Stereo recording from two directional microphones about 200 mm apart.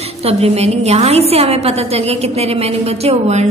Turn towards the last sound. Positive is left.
turn(degrees=-35)  # may be behind; listen again after turning